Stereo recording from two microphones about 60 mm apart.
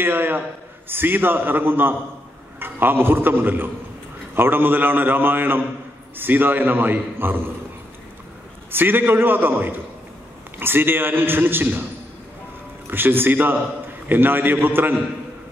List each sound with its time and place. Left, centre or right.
0.0 s a man's voice: right
8.7 s a man's voice: right
12.8 s a man's voice: right